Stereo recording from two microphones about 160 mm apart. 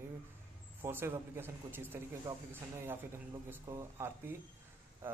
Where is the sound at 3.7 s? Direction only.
20° right (ahead or behind).